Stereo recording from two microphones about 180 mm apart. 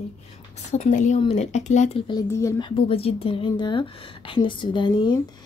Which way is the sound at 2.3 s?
15° left (ahead or behind).